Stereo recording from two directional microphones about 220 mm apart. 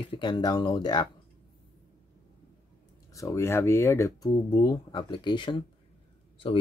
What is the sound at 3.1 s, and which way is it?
Speech, 15° left (ahead or behind).